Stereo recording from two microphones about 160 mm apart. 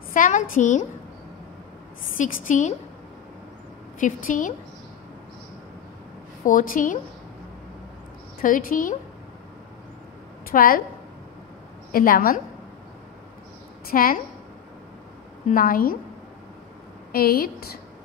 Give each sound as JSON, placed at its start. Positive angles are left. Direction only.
{"t": 0.1, "sound": "a woman's voice", "side_deg": 55}
{"t": 2.1, "sound": "a woman's voice", "side_deg": 55}
{"t": 4.0, "sound": "a woman's voice", "side_deg": 55}
{"t": 6.4, "sound": "a woman's voice", "side_deg": 60}
{"t": 8.4, "sound": "a woman's voice", "side_deg": 60}
{"t": 10.5, "sound": "a woman's voice", "side_deg": 60}
{"t": 11.9, "sound": "a woman's voice", "side_deg": 65}
{"t": 13.8, "sound": "a woman's voice", "side_deg": 60}
{"t": 15.5, "sound": "a woman's voice", "side_deg": 60}
{"t": 17.1, "sound": "a woman's voice", "side_deg": 70}